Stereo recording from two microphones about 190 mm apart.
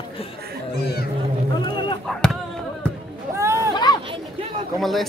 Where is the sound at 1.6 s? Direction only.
25° left (ahead or behind).